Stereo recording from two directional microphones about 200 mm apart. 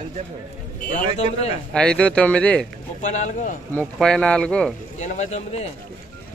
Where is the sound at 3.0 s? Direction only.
35° left (ahead or behind).